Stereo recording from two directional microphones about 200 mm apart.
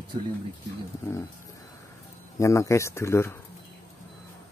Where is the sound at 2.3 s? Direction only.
15° left (ahead or behind).